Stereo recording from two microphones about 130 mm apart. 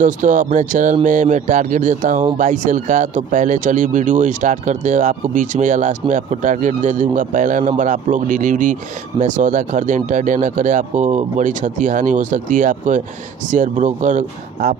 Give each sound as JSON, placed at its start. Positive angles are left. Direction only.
{"t": 0.0, "sound": "speech", "side_deg": -90}